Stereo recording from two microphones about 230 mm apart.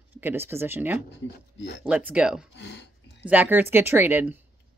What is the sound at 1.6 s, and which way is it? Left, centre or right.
Speech, left.